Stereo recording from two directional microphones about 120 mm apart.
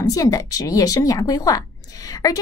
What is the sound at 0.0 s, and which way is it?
Speech, 30° left (ahead or behind).